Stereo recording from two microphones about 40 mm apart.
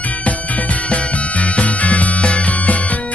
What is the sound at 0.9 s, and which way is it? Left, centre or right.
Music, left.